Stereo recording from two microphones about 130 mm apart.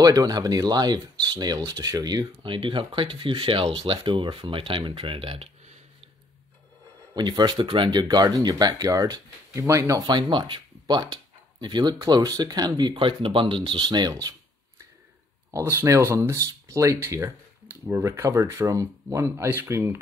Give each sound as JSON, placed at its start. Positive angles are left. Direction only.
{"t": 0.0, "sound": "speech", "side_deg": -30}
{"t": 7.2, "sound": "speech", "side_deg": -35}
{"t": 15.5, "sound": "speech", "side_deg": -20}